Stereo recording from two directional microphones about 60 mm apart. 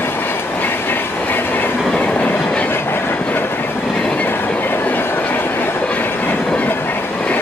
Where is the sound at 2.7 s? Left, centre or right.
Left.